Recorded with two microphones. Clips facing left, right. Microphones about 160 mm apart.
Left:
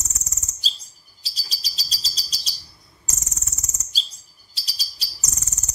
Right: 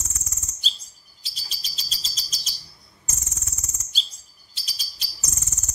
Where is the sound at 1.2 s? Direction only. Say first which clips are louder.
Left 2 dB; 35° left (ahead or behind).